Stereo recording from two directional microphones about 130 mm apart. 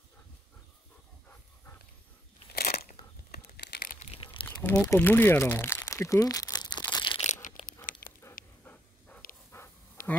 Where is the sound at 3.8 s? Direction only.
90° left.